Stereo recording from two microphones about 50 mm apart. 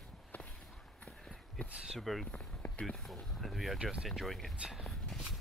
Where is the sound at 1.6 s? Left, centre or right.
Left.